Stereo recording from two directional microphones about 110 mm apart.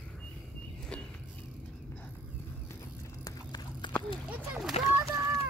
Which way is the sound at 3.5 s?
40° left (ahead or behind).